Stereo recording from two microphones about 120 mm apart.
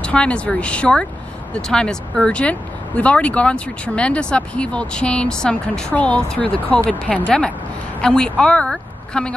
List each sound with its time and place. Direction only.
0.0 s a woman's voice: 10° left (ahead or behind)